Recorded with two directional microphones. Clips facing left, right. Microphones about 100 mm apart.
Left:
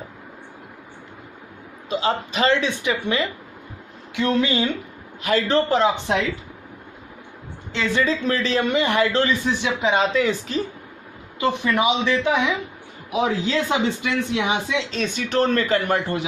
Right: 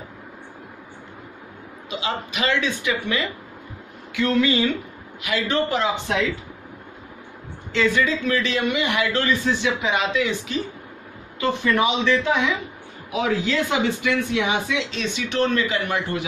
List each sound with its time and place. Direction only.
1.9 s speech: 35° left (ahead or behind)
5.2 s a man's voice: 35° left (ahead or behind)
7.7 s a man's voice: 30° left (ahead or behind)
9.2 s speech: 20° left (ahead or behind); by 10.6 s 40° left (ahead or behind)
11.3 s speech: 20° left (ahead or behind)
14.9 s speech: 45° left (ahead or behind)